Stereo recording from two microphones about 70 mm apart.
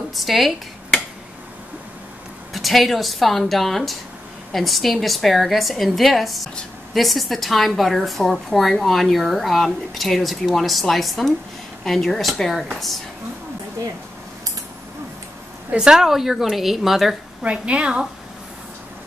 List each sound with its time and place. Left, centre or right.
0.1 s a woman's voice: centre
2.5 s a woman's voice: centre
15.7 s a woman's voice: centre
17.4 s a woman's voice: centre